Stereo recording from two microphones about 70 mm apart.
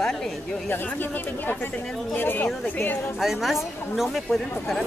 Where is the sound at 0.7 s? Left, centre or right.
Left.